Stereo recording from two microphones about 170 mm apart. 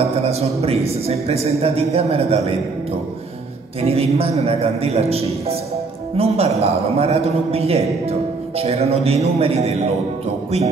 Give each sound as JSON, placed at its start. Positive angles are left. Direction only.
{"t": 0.2, "sound": "a man's voice", "side_deg": -40}
{"t": 3.8, "sound": "a man's voice", "side_deg": -35}